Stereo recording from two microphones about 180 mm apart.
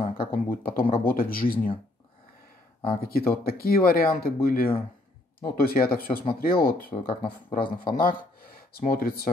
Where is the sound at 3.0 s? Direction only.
55° left (ahead or behind).